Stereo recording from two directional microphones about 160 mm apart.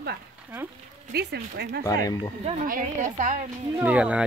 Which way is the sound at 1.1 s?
90° right.